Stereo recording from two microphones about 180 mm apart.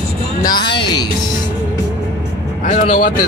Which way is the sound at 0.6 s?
25° left (ahead or behind).